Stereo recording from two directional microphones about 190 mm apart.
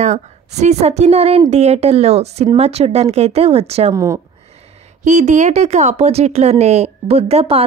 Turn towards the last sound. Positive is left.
turn(degrees=-30)  # may be behind; listen again after turning